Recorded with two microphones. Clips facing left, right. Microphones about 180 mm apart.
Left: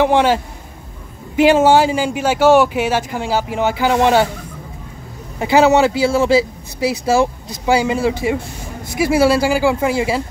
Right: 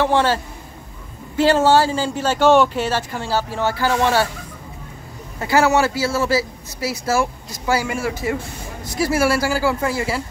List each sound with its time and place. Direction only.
0.0 s speech: 15° left (ahead or behind)
5.4 s speech: 20° left (ahead or behind)